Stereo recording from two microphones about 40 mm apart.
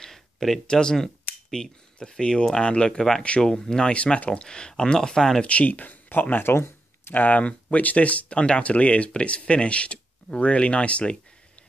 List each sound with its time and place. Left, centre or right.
0.0 s a sound: centre
0.7 s speech: centre
3.4 s speech: centre
3.9 s speech: left; by 5.4 s centre
5.4 s speech: left
6.3 s a sound: left
7.2 s speech: left